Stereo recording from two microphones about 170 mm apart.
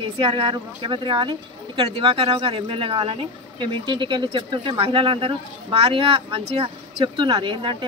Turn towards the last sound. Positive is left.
turn(degrees=-30)  # may be behind; listen again after turning